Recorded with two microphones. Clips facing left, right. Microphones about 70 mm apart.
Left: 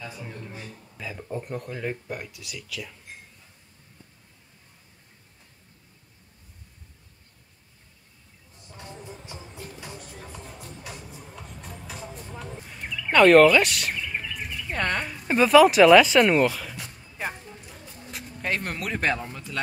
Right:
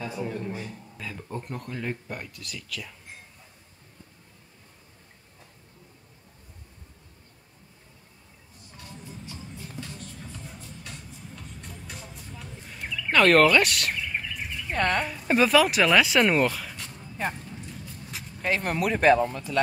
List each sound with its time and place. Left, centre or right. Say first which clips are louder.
0.9 s speech: left 3 dB; centre
8.6 s music: left 3 dB; left
10.8 s music: left 2 dB; centre
12.1 s music: left 5 dB; left
12.6 s a sound: right 2 dB; centre